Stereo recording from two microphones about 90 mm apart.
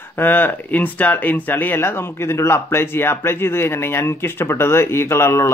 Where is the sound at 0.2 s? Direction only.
20° left (ahead or behind).